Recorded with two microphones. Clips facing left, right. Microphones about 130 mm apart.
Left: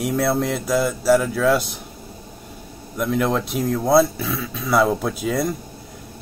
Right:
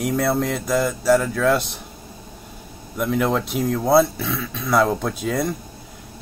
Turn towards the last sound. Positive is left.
turn(degrees=5)  # may be behind; listen again after turning